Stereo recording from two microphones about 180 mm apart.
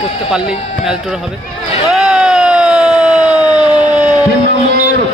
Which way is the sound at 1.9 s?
5° right (ahead or behind).